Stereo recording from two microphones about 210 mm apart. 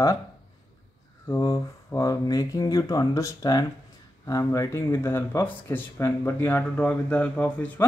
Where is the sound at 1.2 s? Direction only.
15° left (ahead or behind).